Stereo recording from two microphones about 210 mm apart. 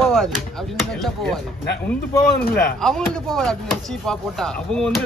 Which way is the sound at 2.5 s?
Centre (ahead or behind).